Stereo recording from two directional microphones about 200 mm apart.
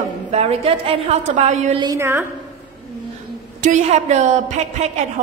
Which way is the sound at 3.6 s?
35° right (ahead or behind).